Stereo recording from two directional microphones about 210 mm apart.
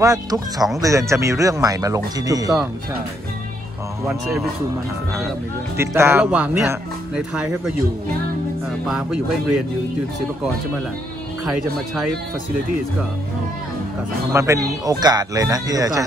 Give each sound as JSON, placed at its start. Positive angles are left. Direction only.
{"t": 0.0, "sound": "speech", "side_deg": -15}
{"t": 5.8, "sound": "speech", "side_deg": -10}
{"t": 8.8, "sound": "speech", "side_deg": 0}
{"t": 14.3, "sound": "speech", "side_deg": -15}